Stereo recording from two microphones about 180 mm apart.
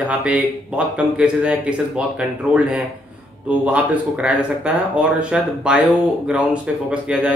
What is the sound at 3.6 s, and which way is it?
A man's voice, 5° right (ahead or behind).